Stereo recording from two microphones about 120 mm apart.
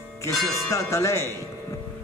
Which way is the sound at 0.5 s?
25° left (ahead or behind).